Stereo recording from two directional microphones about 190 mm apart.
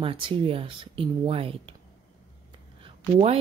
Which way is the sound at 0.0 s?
25° right (ahead or behind).